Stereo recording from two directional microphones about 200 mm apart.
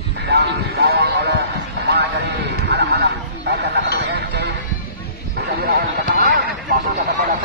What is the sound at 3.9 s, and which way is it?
Music, 55° right (ahead or behind).